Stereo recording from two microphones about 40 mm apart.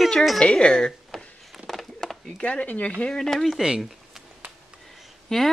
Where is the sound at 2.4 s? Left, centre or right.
Left.